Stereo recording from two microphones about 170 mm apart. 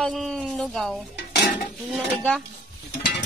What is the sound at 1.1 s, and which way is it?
Dishes, 75° left (ahead or behind).